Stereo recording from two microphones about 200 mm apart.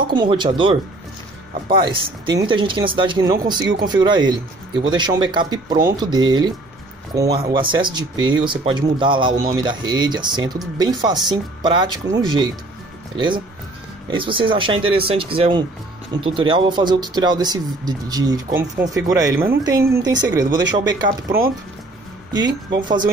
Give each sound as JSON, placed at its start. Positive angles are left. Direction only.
{"t": 0.1, "sound": "speech", "side_deg": -25}